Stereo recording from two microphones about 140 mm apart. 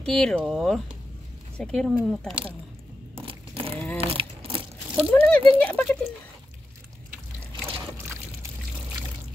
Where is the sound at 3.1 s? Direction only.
40° right (ahead or behind).